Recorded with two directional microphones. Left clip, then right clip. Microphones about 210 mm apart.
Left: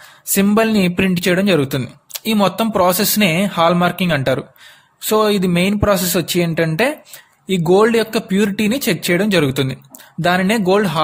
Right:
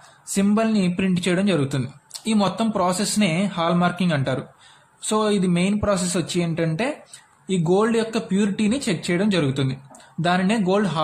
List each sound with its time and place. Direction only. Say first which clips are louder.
0.3 s a man's voice: left 7 dB; 45° left (ahead or behind)